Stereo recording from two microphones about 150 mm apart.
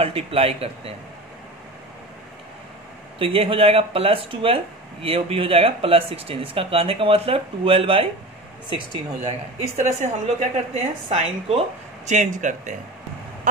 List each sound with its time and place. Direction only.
0.0 s speech: 40° right (ahead or behind)
3.2 s speech: 40° right (ahead or behind)
9.2 s a woman's voice: 45° right (ahead or behind)
12.1 s speech: 55° right (ahead or behind)